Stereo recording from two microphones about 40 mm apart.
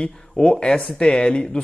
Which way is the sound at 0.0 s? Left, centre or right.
Left.